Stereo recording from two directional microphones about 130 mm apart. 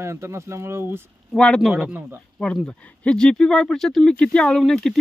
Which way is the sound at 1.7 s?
15° right (ahead or behind).